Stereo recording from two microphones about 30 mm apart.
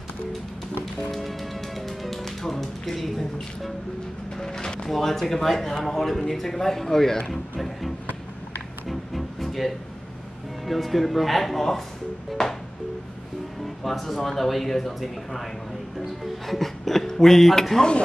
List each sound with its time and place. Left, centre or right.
1.1 s music: centre
2.2 s tap: centre
2.6 s speech: centre
4.5 s speech: left
4.8 s speech: centre
7.5 s speech: centre
8.8 s music: centre
10.6 s speech: centre
12.4 s speech: centre
13.8 s speech: centre